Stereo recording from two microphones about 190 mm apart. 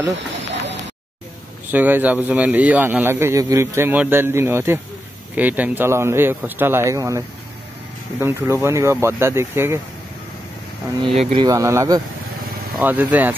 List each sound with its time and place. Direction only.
0.3 s a sound: 70° right (ahead or behind)
1.7 s speech: 10° right (ahead or behind)
11.1 s speech: 35° right (ahead or behind)
11.4 s speech: 15° right (ahead or behind)